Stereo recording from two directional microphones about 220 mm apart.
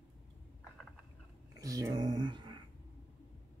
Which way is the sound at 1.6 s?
15° right (ahead or behind).